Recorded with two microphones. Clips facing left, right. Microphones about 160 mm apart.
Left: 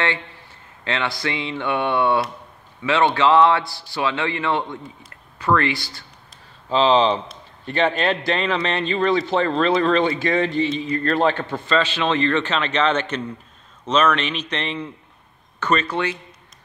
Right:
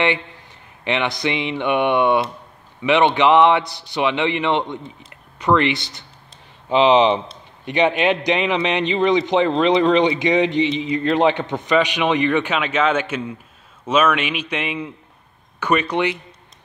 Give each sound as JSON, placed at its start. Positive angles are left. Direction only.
{"t": 0.8, "sound": "a man's voice", "side_deg": -20}